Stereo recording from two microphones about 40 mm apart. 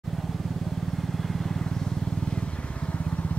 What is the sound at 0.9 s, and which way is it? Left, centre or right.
Vehicle, centre.